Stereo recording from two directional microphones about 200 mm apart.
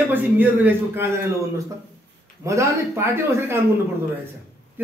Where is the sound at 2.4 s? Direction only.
15° right (ahead or behind).